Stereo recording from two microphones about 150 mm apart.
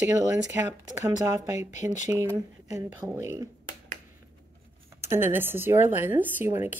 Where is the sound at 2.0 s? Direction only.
20° right (ahead or behind).